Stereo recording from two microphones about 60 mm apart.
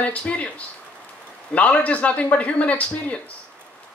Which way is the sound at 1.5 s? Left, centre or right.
Left.